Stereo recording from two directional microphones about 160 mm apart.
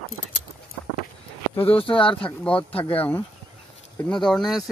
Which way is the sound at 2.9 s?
10° left (ahead or behind).